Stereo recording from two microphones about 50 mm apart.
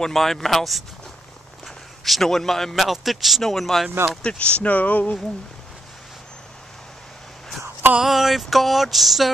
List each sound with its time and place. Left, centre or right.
0.0 s a man's voice: centre
2.0 s a man's voice: centre
4.2 s speech: left
8.0 s a man's voice: centre